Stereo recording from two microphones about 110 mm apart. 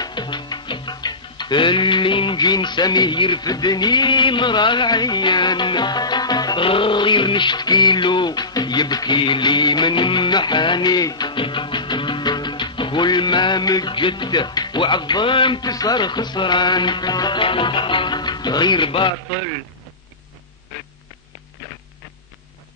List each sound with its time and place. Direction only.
0.0 s speech: 45° left (ahead or behind)
17.4 s music: 50° left (ahead or behind)